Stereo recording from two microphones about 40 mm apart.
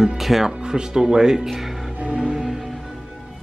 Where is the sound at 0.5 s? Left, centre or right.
Centre.